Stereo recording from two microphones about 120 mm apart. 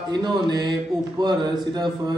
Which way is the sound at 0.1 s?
40° right (ahead or behind).